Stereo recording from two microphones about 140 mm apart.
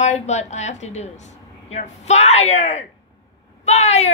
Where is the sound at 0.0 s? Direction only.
55° left (ahead or behind).